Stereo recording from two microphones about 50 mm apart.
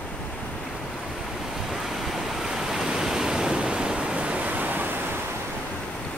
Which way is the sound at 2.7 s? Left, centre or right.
Centre.